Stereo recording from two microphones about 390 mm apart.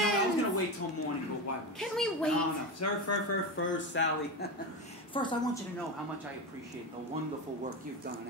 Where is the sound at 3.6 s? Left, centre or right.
Left.